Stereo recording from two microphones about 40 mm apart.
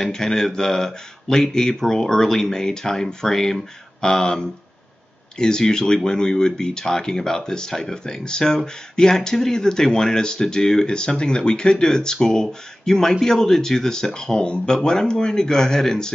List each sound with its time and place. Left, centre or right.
0.1 s speech: centre